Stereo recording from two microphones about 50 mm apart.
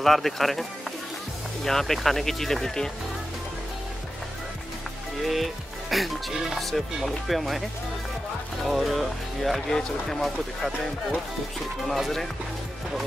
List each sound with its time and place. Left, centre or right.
0.0 s music: centre
1.6 s speech: centre
5.2 s music: centre
8.6 s music: centre
9.8 s speech: centre
11.9 s music: centre